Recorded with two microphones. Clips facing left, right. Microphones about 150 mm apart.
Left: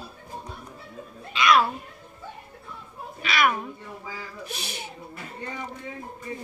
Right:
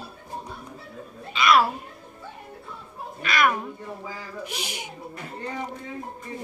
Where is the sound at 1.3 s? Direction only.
5° right (ahead or behind).